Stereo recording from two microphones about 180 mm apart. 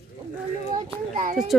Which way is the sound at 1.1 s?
50° right (ahead or behind).